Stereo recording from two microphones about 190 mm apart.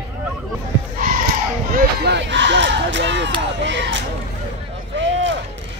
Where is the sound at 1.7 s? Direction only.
60° right (ahead or behind).